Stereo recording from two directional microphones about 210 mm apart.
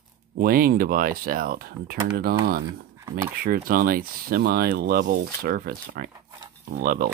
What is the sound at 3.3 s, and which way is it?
Speech, 45° right (ahead or behind).